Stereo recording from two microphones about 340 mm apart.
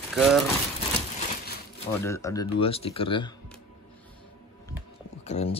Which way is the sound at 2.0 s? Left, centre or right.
Centre.